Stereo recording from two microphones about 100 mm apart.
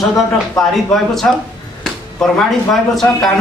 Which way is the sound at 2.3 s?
Centre (ahead or behind).